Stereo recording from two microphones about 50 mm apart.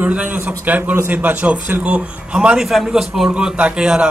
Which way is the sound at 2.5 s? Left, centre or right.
Centre.